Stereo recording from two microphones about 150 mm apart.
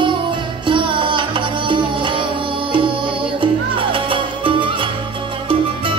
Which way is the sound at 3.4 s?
35° right (ahead or behind).